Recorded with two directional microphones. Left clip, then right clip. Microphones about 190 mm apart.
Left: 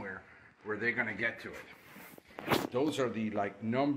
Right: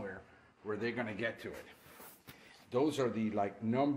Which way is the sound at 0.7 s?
15° right (ahead or behind).